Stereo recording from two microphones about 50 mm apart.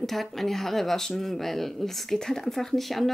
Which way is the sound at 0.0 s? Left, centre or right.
Centre.